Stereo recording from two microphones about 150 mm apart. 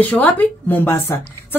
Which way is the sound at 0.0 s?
10° left (ahead or behind).